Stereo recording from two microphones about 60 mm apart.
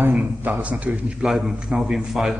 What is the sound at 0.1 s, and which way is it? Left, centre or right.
Speech, right.